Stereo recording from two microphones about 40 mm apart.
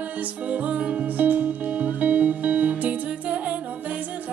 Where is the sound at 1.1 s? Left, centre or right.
Right.